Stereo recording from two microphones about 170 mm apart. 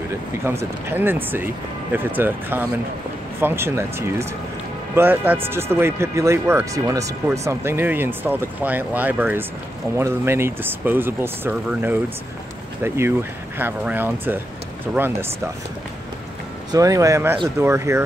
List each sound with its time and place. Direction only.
0.5 s speech: 15° right (ahead or behind)
16.7 s speech: 20° right (ahead or behind)